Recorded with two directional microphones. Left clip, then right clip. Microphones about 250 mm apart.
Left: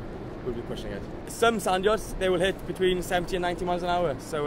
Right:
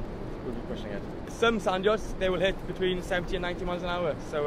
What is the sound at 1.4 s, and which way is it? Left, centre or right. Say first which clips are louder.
Speech: left 2 dB; left.